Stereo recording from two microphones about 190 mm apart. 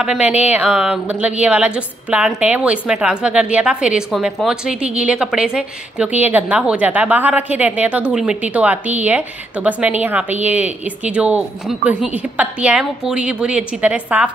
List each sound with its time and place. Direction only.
0.0 s a woman's voice: 5° right (ahead or behind)